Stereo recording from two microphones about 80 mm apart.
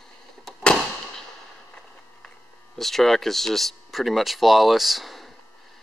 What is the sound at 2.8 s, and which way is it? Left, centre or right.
Speech, centre.